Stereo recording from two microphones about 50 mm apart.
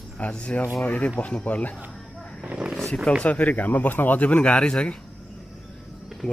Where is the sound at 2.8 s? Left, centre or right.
Centre.